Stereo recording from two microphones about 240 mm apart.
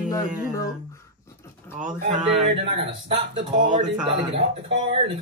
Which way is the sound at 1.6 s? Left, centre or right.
Centre.